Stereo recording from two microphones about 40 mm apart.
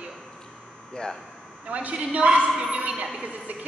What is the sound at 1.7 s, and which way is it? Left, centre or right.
A woman's voice, right.